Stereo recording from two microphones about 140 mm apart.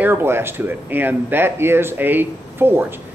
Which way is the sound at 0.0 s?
15° right (ahead or behind).